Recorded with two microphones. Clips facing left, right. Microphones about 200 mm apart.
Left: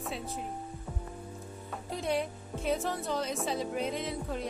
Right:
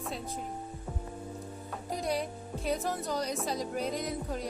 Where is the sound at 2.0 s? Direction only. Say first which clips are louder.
Left 2 dB; centre (ahead or behind).